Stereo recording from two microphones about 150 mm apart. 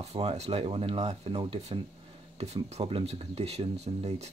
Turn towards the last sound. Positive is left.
turn(degrees=-45)  # may be behind; listen again after turning